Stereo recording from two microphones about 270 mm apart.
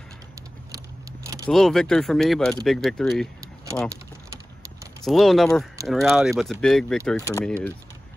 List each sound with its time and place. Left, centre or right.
1.5 s speech: centre
5.0 s speech: centre